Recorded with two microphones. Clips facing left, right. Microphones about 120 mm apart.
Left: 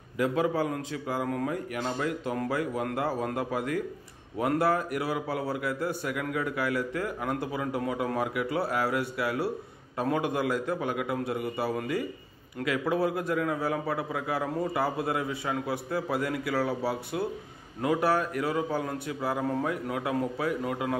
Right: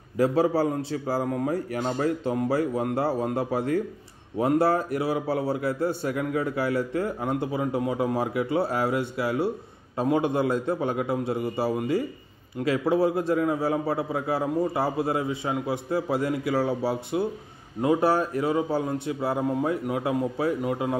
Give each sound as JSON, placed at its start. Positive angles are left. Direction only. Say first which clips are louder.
{"t": 0.2, "sound": "a man's voice", "louder": "right 5 dB", "side_deg": -35}